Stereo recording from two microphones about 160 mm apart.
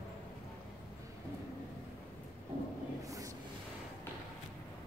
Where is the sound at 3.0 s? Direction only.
20° right (ahead or behind).